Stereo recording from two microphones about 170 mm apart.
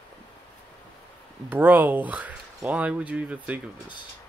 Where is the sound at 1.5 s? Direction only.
10° right (ahead or behind).